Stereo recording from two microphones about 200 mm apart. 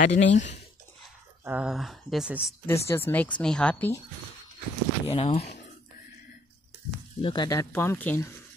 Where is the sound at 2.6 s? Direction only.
15° left (ahead or behind).